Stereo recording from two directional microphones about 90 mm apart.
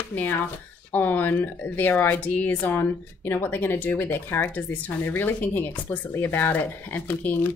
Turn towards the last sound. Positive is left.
turn(degrees=20)  # may be behind; listen again after turning